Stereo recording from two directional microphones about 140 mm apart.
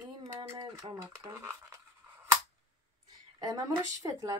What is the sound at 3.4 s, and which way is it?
Speech, 25° right (ahead or behind).